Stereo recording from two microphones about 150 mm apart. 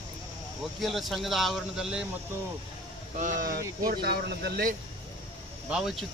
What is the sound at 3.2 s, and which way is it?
Speech, 60° right (ahead or behind).